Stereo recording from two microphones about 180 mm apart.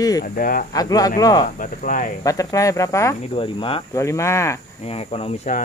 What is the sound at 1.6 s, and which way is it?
Speech, 45° left (ahead or behind).